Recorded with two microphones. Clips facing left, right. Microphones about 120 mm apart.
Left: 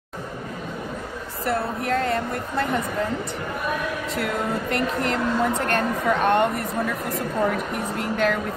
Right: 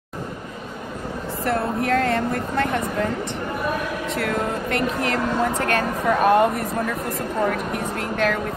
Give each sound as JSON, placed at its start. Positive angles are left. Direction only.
{"t": 1.4, "sound": "speech", "side_deg": 5}
{"t": 4.1, "sound": "speech", "side_deg": 0}